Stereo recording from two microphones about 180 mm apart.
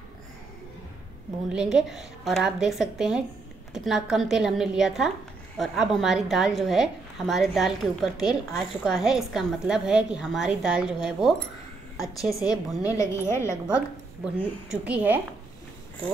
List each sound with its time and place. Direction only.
1.5 s a woman's voice: 5° right (ahead or behind)
12.4 s a woman's voice: 20° left (ahead or behind)
13.5 s a woman's voice: 5° right (ahead or behind)